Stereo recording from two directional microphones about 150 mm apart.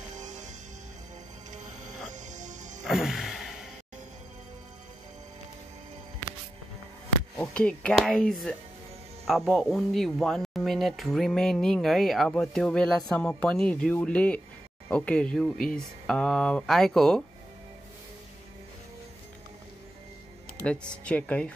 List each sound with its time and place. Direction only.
0.2 s music: 55° right (ahead or behind)
2.1 s music: 55° right (ahead or behind)
2.9 s music: centre (ahead or behind)
7.3 s speech: 5° left (ahead or behind)
20.6 s speech: 5° left (ahead or behind)